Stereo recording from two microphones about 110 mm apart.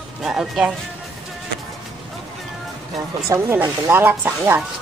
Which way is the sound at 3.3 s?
25° right (ahead or behind).